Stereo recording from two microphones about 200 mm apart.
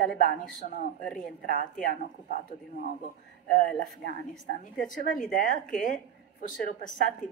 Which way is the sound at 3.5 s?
45° left (ahead or behind).